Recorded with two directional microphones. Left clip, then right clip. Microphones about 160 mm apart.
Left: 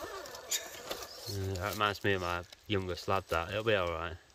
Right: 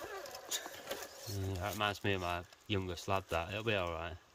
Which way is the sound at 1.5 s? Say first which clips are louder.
Left 4 dB; centre (ahead or behind).